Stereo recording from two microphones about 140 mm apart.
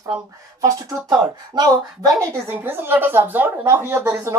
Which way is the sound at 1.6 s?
25° right (ahead or behind).